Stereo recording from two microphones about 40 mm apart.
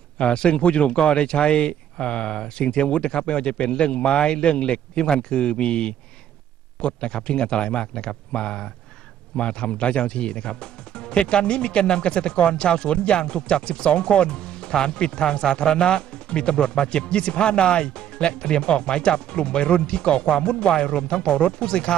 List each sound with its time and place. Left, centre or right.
0.2 s speech: left